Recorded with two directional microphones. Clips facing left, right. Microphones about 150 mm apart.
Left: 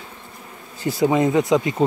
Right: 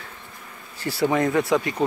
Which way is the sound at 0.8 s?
20° left (ahead or behind).